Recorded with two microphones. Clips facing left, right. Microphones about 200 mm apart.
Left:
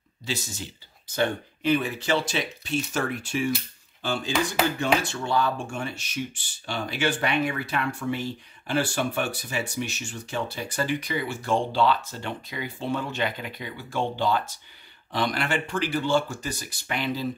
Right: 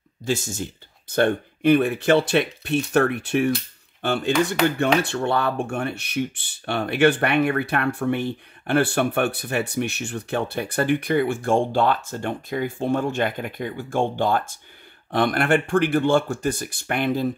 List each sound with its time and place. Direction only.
0.2 s speech: 50° right (ahead or behind)